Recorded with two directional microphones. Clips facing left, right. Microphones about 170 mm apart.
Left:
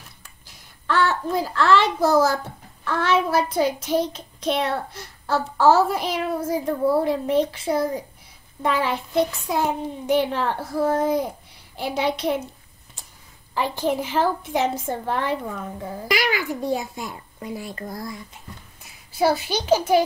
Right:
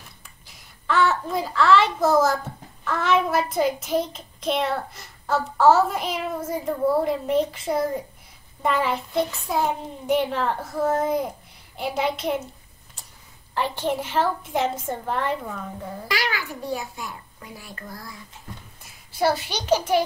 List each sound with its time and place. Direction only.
0.8 s child singing: centre (ahead or behind)
13.6 s child singing: 5° left (ahead or behind)
16.1 s a child's voice: 20° left (ahead or behind)
19.1 s child singing: centre (ahead or behind)